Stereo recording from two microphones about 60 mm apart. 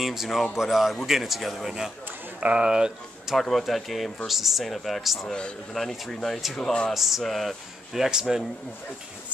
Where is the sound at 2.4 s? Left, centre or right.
Centre.